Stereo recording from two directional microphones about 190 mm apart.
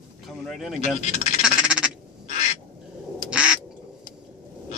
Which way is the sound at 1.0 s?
35° left (ahead or behind).